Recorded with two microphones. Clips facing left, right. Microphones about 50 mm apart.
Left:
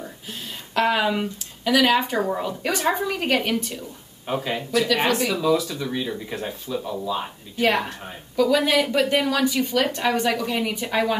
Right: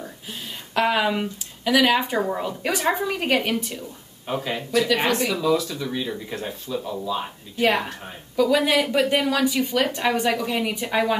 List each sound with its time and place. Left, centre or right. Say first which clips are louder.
0.7 s speech: even; centre
4.3 s speech: left 1 dB; centre
4.6 s speech: even; centre
5.1 s speech: even; centre